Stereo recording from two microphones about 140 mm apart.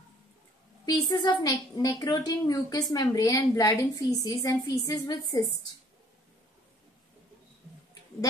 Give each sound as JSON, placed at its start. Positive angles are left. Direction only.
{"t": 0.8, "sound": "a woman's voice", "side_deg": 30}